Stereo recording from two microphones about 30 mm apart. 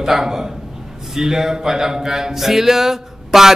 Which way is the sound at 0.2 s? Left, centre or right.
Centre.